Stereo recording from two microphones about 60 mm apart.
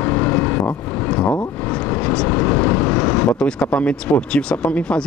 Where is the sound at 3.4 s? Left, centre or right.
Centre.